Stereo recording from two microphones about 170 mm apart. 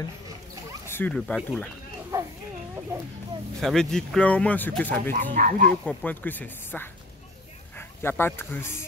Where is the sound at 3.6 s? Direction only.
5° left (ahead or behind).